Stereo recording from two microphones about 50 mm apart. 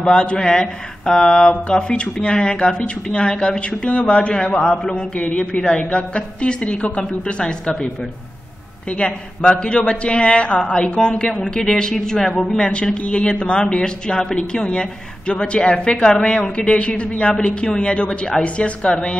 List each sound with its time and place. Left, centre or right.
0.0 s speech: centre
8.8 s speech: left